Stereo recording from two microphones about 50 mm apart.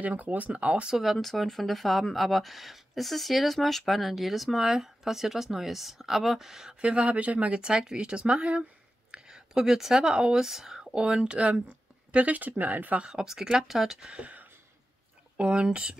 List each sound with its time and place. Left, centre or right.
0.0 s speech: right
0.9 s speech: centre; by 13.0 s right
13.0 s speech: centre
14.1 s speech: right